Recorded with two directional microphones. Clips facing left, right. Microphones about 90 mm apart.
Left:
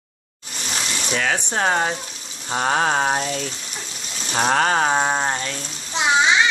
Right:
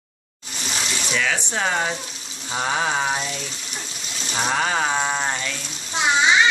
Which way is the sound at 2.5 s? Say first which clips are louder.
Left 3 dB; 45° left (ahead or behind).